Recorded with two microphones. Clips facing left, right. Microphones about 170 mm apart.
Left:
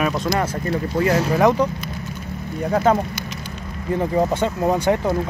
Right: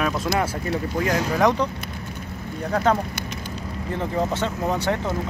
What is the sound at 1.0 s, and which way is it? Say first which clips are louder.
Speech: left 4 dB; 10° left (ahead or behind).